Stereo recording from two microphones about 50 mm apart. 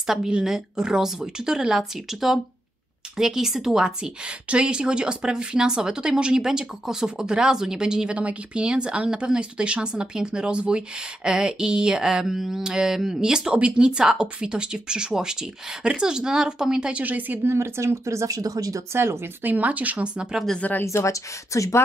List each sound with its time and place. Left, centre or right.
0.0 s a woman's voice: centre
16.9 s speech: right
17.5 s speech: right
19.4 s speech: right
20.5 s speech: left
20.8 s speech: left